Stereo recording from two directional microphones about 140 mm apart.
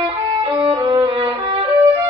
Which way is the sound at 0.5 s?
25° right (ahead or behind).